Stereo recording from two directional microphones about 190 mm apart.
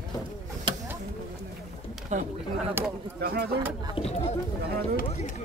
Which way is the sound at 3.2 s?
55° right (ahead or behind).